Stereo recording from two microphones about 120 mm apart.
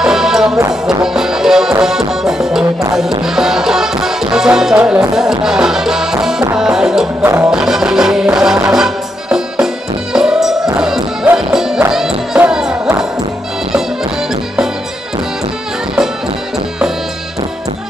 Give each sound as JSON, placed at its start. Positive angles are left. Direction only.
{"t": 0.0, "sound": "music", "side_deg": -5}
{"t": 7.2, "sound": "music", "side_deg": -20}
{"t": 7.5, "sound": "music", "side_deg": -5}